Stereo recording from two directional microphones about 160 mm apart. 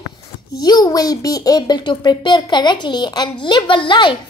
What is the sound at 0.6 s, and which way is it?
A woman's voice, 25° left (ahead or behind).